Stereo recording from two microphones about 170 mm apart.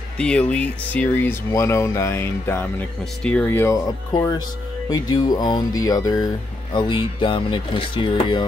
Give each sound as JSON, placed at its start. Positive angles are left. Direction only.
{"t": 0.2, "sound": "speech", "side_deg": 5}
{"t": 4.8, "sound": "speech", "side_deg": 25}